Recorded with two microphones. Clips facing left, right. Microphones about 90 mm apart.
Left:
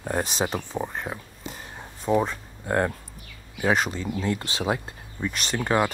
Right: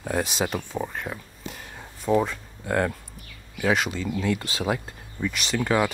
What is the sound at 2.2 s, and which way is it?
Speech, 30° left (ahead or behind).